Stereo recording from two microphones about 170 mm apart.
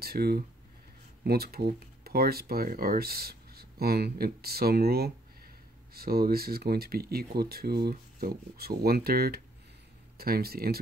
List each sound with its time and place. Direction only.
0.0 s speech: 65° right (ahead or behind)